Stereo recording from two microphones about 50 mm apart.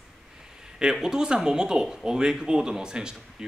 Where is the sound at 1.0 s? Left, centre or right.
Centre.